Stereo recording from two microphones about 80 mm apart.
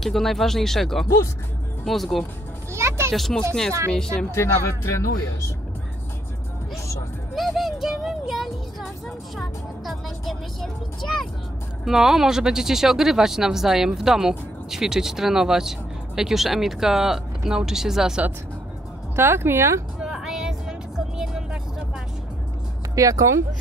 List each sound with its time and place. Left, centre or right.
0.0 s speech: centre
1.0 s speech: left
1.9 s speech: centre
2.7 s a sound: right
3.1 s speech: centre
4.3 s speech: left
7.3 s a sound: centre
9.4 s music: centre
11.8 s speech: centre
19.1 s speech: right
20.0 s a sound: centre
21.2 s vehicle: centre
22.9 s speech: right